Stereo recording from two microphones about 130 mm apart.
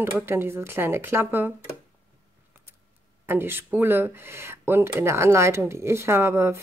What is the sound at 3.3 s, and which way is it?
Speech, 15° right (ahead or behind).